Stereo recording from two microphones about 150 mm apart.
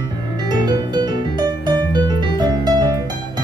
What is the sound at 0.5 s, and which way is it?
Music, 30° right (ahead or behind).